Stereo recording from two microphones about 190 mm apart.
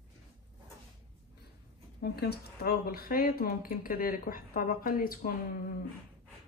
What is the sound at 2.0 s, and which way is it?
Speech, 60° left (ahead or behind).